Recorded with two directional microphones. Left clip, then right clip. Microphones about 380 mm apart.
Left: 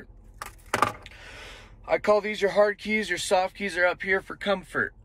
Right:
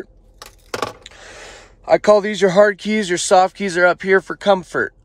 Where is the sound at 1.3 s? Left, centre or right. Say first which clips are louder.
Right 6 dB; right.